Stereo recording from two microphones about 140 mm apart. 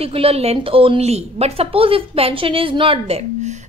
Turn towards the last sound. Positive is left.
turn(degrees=-55)  # may be behind; listen again after turning